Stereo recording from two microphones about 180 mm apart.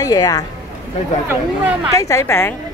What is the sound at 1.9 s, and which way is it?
Speech, 15° left (ahead or behind).